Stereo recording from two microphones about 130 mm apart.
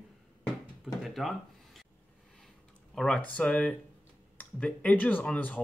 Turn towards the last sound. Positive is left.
turn(degrees=10)  # may be behind; listen again after turning